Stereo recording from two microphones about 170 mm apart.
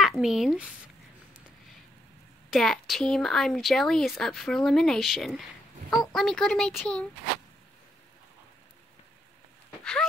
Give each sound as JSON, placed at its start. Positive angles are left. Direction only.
{"t": 0.0, "sound": "speech", "side_deg": 0}
{"t": 2.5, "sound": "speech", "side_deg": 0}